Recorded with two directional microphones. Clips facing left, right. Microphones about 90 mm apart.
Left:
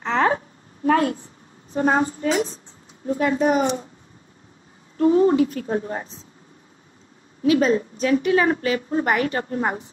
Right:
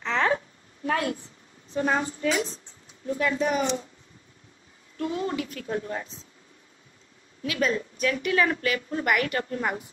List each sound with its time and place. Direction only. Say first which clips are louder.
0.0 s a sound: left 5 dB; 35° left (ahead or behind)
0.8 s a woman's voice: left 8 dB; 35° left (ahead or behind)
4.9 s a woman's voice: left 13 dB; 30° left (ahead or behind)
7.4 s a woman's voice: left 9 dB; 30° left (ahead or behind)